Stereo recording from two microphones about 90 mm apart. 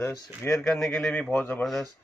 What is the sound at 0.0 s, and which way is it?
Speech, 30° left (ahead or behind).